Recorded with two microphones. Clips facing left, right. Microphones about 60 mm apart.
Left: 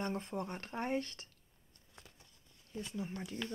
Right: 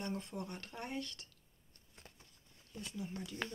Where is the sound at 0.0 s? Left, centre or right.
Left.